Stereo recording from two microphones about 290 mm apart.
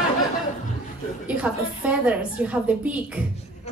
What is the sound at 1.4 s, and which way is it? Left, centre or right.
A woman's voice, centre.